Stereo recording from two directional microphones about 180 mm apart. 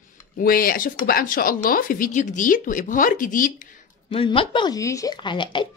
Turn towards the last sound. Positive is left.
turn(degrees=25)  # may be behind; listen again after turning